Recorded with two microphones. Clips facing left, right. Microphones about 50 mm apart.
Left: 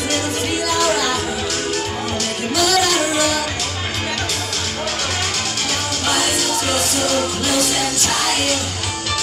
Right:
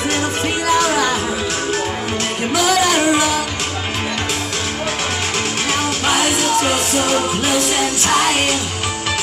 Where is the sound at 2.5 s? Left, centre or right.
Right.